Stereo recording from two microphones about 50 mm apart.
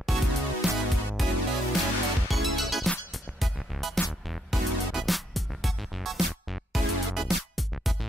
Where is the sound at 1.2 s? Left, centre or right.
Centre.